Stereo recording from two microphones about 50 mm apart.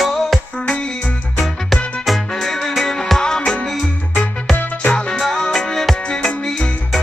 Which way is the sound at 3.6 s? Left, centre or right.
Centre.